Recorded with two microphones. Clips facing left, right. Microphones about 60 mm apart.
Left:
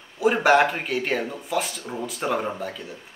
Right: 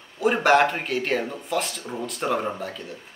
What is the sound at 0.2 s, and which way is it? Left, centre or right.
Speech, centre.